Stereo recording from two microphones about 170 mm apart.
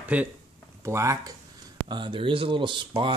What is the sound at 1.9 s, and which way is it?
Speech, 30° right (ahead or behind).